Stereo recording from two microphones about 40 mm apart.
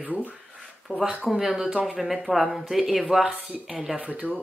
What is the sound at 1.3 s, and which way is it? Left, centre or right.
Speech, centre.